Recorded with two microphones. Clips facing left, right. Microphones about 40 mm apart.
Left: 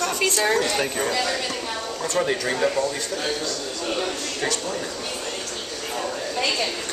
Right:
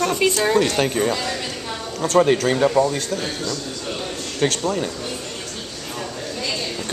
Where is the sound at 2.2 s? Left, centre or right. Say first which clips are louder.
Right 5 dB; right.